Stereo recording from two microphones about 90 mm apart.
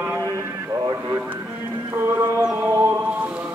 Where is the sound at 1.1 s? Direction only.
20° right (ahead or behind).